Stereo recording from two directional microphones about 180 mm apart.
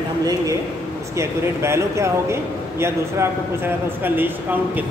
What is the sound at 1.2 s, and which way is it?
A man's voice, 15° right (ahead or behind).